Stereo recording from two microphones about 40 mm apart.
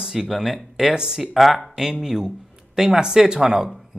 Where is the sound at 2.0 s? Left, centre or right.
Centre.